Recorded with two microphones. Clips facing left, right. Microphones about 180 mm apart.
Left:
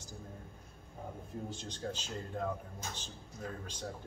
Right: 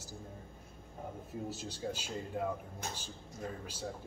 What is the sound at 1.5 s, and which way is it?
A man's voice, 5° right (ahead or behind).